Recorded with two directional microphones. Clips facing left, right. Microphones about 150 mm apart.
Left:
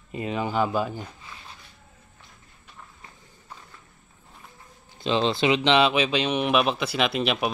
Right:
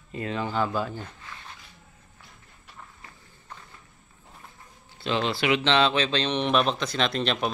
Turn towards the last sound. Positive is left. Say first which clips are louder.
# left 2 dB
turn(degrees=10)  # may be behind; listen again after turning